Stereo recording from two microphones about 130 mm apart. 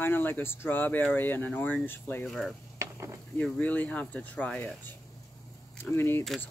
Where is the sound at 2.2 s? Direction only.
Centre (ahead or behind).